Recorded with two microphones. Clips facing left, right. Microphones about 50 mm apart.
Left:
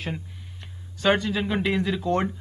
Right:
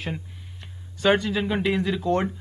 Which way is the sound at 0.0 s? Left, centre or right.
Centre.